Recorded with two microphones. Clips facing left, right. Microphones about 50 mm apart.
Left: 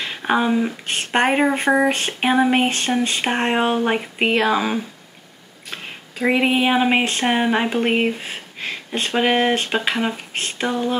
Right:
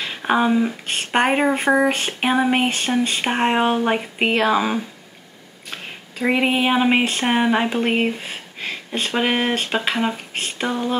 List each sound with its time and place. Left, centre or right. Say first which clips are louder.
0.0 s speech: right 1 dB; centre